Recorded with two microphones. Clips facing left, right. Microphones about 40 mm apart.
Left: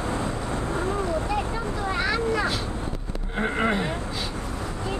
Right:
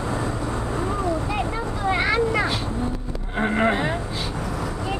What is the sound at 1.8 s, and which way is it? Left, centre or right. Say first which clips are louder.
Vehicle: right 5 dB; right.